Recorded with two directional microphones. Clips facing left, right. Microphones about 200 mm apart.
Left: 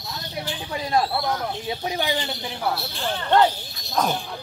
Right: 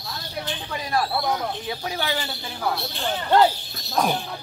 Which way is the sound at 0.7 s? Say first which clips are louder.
Left 3 dB; 25° left (ahead or behind).